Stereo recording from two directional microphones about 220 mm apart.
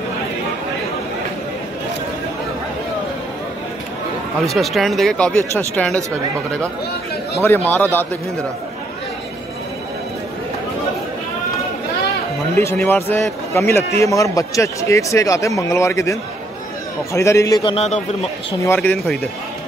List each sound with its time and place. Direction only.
4.5 s speech: centre (ahead or behind)
7.4 s a man's voice: 10° left (ahead or behind)
12.5 s a man's voice: 10° left (ahead or behind); by 18.0 s 30° left (ahead or behind)
18.6 s a man's voice: 10° left (ahead or behind)